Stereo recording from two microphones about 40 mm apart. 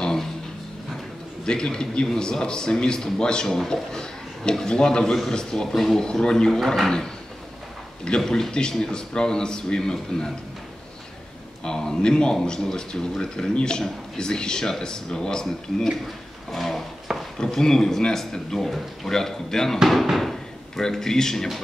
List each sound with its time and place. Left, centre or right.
0.0 s a sound: centre
1.4 s speech: centre
8.3 s speech: centre
11.6 s speech: centre
16.5 s a sound: centre
17.4 s speech: centre
19.9 s slam: centre
20.8 s speech: centre